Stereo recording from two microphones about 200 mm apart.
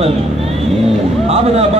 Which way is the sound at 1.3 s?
30° right (ahead or behind).